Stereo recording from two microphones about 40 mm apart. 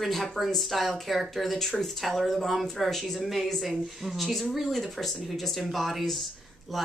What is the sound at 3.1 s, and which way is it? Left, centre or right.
Speech, centre.